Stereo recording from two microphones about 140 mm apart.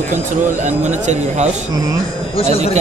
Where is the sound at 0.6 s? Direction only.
55° right (ahead or behind).